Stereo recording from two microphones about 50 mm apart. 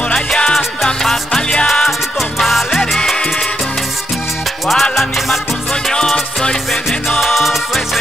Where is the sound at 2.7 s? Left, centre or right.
Centre.